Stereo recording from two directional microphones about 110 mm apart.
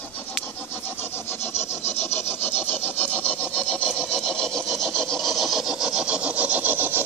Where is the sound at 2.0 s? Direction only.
20° left (ahead or behind).